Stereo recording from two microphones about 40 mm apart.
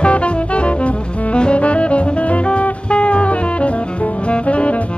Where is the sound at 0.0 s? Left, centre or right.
Left.